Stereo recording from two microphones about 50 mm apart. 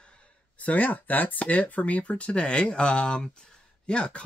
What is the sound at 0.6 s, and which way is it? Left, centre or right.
Speech, left.